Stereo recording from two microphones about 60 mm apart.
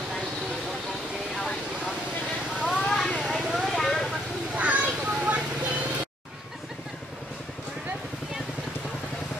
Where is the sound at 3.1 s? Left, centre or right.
Centre.